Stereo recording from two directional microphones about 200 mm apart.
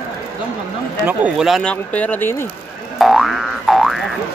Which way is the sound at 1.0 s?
5° right (ahead or behind).